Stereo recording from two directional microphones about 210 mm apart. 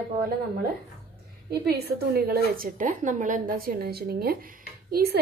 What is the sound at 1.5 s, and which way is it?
A woman's voice, 50° right (ahead or behind).